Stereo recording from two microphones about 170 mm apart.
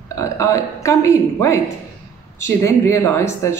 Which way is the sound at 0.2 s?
20° left (ahead or behind).